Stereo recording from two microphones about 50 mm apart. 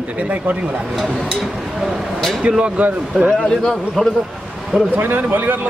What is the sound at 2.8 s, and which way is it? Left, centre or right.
Speech, right.